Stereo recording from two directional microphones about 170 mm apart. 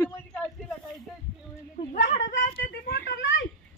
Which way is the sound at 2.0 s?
50° left (ahead or behind).